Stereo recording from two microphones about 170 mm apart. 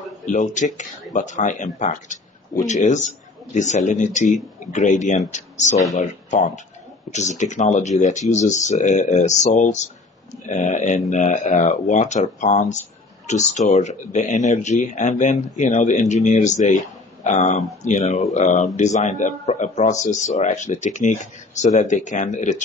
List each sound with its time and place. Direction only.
0.2 s a man's voice: 45° left (ahead or behind)